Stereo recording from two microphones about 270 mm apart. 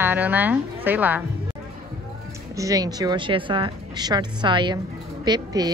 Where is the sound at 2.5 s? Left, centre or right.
Centre.